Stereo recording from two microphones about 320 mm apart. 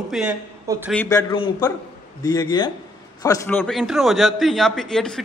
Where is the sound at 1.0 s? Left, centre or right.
Centre.